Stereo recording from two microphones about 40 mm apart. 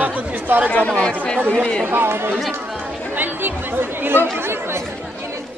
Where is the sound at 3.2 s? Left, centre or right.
Right.